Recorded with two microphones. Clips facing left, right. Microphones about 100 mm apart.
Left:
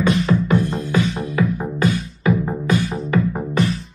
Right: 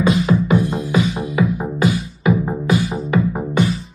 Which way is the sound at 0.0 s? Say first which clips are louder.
Right 2 dB; 5° right (ahead or behind).